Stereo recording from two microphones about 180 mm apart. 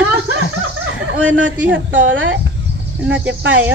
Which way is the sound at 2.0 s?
90° right.